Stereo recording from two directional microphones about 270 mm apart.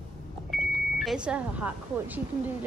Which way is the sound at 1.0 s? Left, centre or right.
Centre.